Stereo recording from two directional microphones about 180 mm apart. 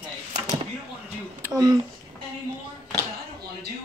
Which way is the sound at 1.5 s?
25° right (ahead or behind).